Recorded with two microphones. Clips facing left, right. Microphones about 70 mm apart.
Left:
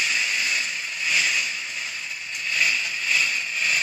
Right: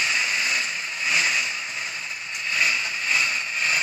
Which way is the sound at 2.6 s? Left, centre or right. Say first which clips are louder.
Even; right.